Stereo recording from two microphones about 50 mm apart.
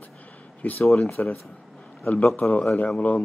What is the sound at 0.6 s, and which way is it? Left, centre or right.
Speech, left.